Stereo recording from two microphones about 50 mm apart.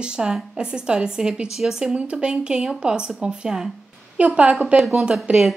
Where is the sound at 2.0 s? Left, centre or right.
Centre.